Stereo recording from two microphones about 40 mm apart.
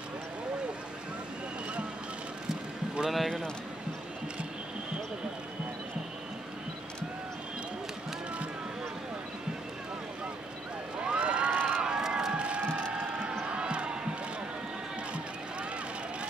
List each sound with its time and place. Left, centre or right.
3.1 s speech: centre
11.0 s a sound: right
11.5 s run: right
11.8 s run: right
12.3 s crowd: right
12.7 s a sound: right
13.5 s basketball bounce: right